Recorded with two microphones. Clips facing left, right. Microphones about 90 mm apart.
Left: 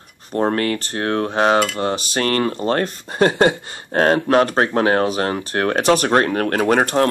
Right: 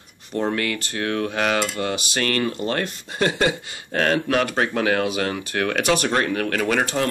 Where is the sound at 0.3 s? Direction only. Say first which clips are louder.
Left 5 dB; 40° left (ahead or behind).